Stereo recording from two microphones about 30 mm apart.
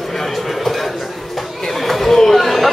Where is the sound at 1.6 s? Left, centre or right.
Centre.